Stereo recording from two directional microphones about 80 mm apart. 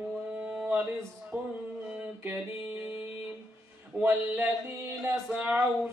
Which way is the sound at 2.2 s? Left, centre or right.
Right.